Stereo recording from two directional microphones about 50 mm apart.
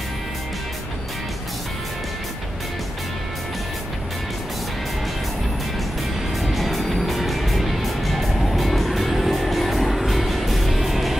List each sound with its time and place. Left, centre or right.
6.4 s music: centre